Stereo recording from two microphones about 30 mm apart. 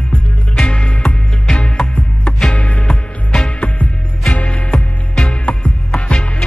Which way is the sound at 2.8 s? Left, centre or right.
Left.